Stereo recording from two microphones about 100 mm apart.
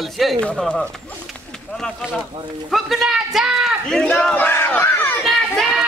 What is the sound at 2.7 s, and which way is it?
A man's voice, centre (ahead or behind).